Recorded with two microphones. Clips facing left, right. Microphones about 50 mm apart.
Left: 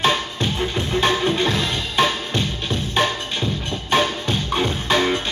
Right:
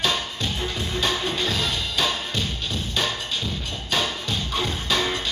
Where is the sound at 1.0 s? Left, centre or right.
Left.